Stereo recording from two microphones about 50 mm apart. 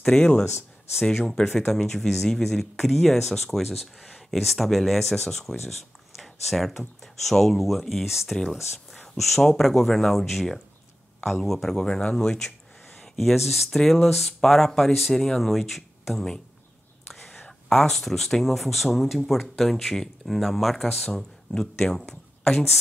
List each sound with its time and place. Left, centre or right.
0.0 s speech: centre
6.1 s a sound: centre
7.2 s speech: centre
13.7 s speech: centre
17.6 s speech: centre